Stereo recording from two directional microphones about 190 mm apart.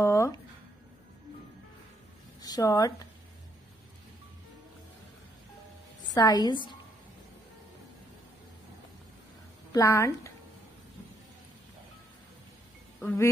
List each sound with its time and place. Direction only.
0.0 s a sound: 15° left (ahead or behind)
2.4 s speech: 20° left (ahead or behind)
6.1 s a woman's voice: 20° left (ahead or behind)
9.7 s speech: 15° left (ahead or behind)
13.0 s speech: 15° left (ahead or behind)